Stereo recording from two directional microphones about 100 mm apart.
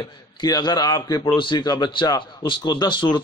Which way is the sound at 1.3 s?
55° left (ahead or behind).